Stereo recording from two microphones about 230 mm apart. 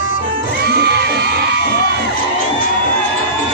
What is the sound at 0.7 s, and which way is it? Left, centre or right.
Children shouting, right.